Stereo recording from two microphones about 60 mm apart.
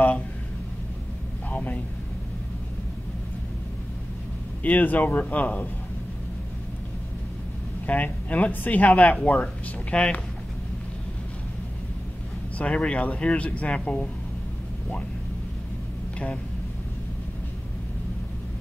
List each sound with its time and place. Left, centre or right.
1.5 s a sound: left
4.6 s speech: left
7.8 s speech: left
12.5 s speech: centre